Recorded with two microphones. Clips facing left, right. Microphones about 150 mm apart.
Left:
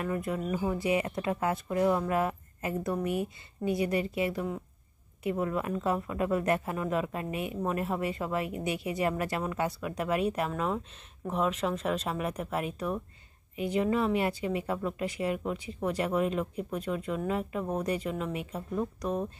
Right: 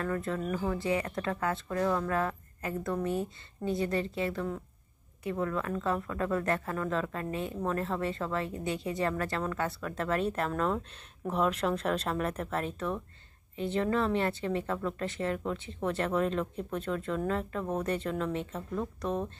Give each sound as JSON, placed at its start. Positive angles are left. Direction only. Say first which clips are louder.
{"t": 0.0, "sound": "speech", "louder": "left 1 dB", "side_deg": 15}